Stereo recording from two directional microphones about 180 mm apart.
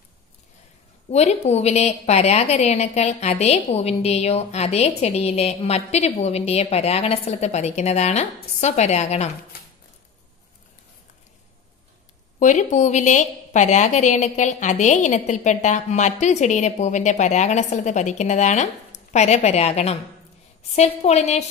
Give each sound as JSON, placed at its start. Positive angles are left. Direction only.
{"t": 1.1, "sound": "a woman's voice", "side_deg": 35}
{"t": 12.4, "sound": "a woman's voice", "side_deg": 40}